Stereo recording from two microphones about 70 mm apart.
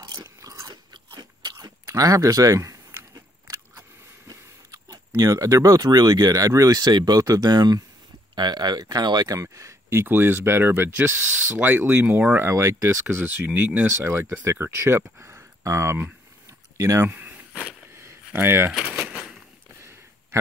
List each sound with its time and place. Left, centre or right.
0.1 s biting: right
4.3 s a sound: right
5.9 s speech: right
9.4 s speech: right
10.0 s speech: right
12.4 s speech: right
13.1 s speech: right
13.8 s speech: right
17.0 s speech: right
17.9 s a sound: right
19.8 s a sound: right